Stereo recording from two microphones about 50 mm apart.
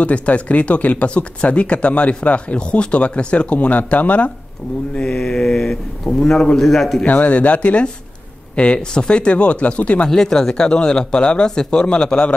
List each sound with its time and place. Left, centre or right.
0.0 s speech: left
4.9 s speech: centre
7.1 s speech: left
10.0 s speech: centre